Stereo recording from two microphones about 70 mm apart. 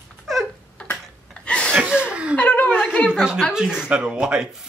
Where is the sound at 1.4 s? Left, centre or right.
Centre.